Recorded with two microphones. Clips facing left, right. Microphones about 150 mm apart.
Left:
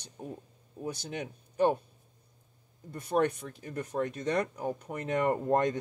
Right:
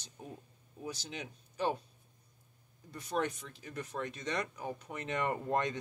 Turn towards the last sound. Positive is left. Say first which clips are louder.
# left 6 dB
turn(degrees=45)  # may be behind; listen again after turning